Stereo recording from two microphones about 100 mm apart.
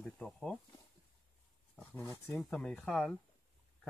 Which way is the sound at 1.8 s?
15° left (ahead or behind).